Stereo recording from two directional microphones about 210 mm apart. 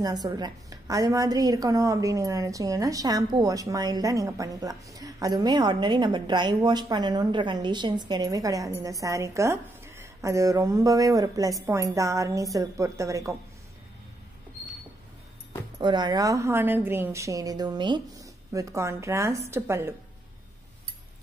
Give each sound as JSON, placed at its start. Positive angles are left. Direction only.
{"t": 0.0, "sound": "a woman's voice", "side_deg": -15}
{"t": 15.8, "sound": "a woman's voice", "side_deg": -20}